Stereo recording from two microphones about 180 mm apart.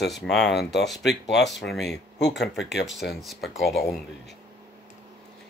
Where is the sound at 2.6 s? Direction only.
75° left (ahead or behind).